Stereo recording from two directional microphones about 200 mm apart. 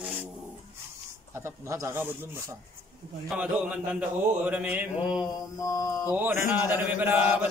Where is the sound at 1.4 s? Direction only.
15° right (ahead or behind).